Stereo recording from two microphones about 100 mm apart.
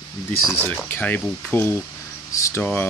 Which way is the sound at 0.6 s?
20° left (ahead or behind).